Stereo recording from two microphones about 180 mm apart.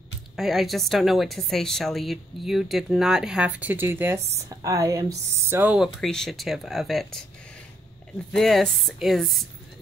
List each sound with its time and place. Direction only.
0.4 s a woman's voice: centre (ahead or behind)
8.4 s a woman's voice: centre (ahead or behind)